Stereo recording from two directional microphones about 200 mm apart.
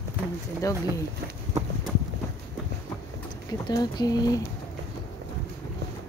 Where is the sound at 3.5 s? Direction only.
20° left (ahead or behind).